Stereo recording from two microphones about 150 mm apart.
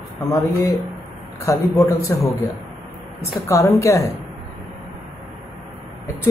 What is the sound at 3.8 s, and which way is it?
Speech, 20° left (ahead or behind).